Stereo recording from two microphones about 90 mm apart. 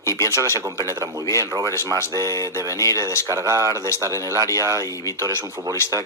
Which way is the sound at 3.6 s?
35° left (ahead or behind).